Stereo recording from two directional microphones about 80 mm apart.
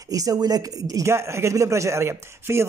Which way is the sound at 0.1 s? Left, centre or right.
Right.